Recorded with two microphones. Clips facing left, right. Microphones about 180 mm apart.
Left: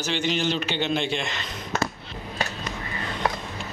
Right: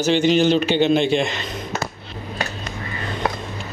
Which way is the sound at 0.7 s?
10° right (ahead or behind).